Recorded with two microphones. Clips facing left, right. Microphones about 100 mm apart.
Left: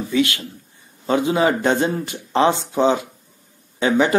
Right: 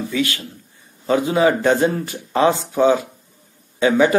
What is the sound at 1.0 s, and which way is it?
Speech, 25° left (ahead or behind).